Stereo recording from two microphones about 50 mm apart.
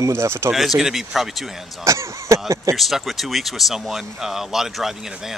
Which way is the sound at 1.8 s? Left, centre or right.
Right.